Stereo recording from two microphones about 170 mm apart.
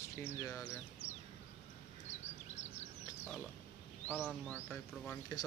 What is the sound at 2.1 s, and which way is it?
Bird vocalization, 40° left (ahead or behind).